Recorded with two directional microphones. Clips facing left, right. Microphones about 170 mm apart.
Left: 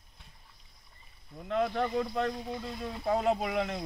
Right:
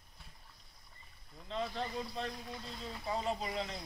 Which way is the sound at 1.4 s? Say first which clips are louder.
Left 9 dB; 65° left (ahead or behind).